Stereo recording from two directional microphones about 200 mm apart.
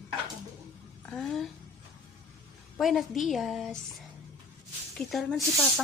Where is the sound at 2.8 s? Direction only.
Centre (ahead or behind).